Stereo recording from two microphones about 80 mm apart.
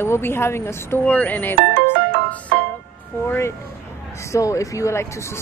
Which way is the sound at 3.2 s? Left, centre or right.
Left.